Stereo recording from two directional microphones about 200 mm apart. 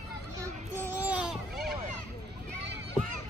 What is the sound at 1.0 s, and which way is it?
Baby cry, 5° right (ahead or behind).